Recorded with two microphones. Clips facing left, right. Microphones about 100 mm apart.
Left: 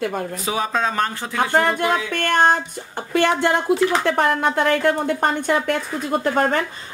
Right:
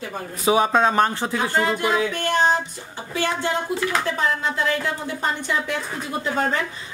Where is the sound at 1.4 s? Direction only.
55° left (ahead or behind).